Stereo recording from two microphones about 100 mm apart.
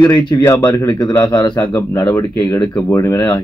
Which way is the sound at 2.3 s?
40° left (ahead or behind).